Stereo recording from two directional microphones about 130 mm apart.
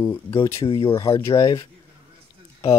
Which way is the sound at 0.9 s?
25° left (ahead or behind).